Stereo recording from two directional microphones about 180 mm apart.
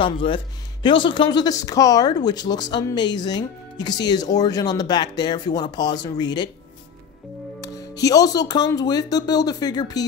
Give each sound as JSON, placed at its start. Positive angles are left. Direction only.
{"t": 0.0, "sound": "speech", "side_deg": 30}
{"t": 7.6, "sound": "speech", "side_deg": 20}